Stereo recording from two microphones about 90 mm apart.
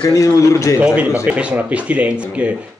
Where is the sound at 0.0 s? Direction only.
40° left (ahead or behind).